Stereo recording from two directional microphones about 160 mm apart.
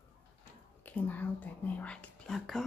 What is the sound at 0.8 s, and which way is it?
Whispering, 10° left (ahead or behind).